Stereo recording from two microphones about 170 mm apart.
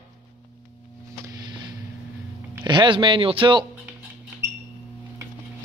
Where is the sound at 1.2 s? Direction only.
25° right (ahead or behind).